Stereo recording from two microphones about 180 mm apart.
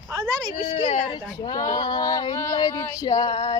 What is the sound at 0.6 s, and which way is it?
Speech, 40° left (ahead or behind).